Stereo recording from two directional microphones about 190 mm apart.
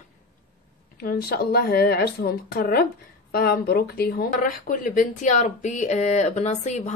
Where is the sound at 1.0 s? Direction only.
55° left (ahead or behind).